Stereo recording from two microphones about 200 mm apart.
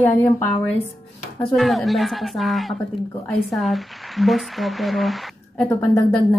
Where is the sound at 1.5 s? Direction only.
Centre (ahead or behind).